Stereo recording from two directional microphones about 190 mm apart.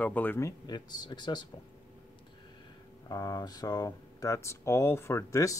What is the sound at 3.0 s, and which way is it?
Speech, 20° left (ahead or behind).